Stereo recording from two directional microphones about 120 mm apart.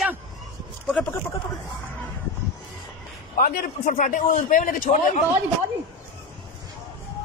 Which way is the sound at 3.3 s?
90° left.